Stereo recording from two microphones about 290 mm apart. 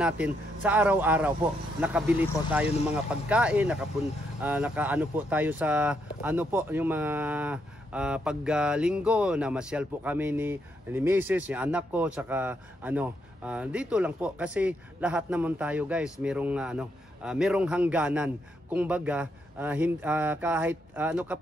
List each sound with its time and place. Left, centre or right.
0.0 s speech: centre